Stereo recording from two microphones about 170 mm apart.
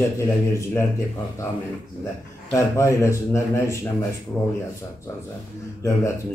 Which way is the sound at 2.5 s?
15° left (ahead or behind).